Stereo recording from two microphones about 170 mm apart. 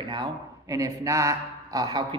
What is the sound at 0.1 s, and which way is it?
Speech, 25° right (ahead or behind).